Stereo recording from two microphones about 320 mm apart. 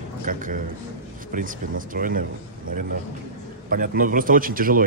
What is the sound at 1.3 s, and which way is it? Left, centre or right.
Speech, right.